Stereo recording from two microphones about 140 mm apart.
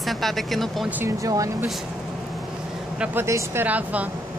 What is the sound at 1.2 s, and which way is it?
Speech, 25° right (ahead or behind).